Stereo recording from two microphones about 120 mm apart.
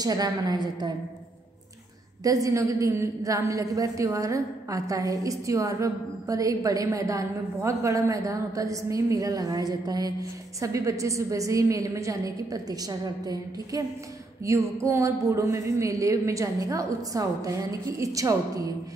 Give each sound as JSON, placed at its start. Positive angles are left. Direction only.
{"t": 0.0, "sound": "a woman's voice", "side_deg": -35}
{"t": 2.2, "sound": "a woman's voice", "side_deg": -30}